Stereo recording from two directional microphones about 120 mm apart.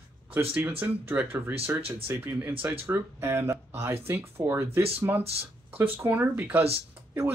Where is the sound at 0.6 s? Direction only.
15° right (ahead or behind).